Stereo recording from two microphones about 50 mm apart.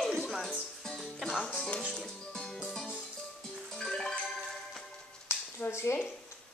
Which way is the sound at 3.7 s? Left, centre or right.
Centre.